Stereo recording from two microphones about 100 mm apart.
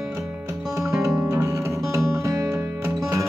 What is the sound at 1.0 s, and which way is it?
Music, 30° right (ahead or behind).